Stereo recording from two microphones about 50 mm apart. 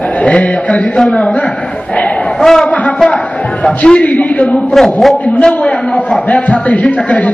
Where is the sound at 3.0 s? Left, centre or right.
Left.